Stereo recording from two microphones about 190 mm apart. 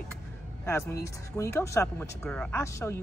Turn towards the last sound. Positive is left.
turn(degrees=15)  # may be behind; listen again after turning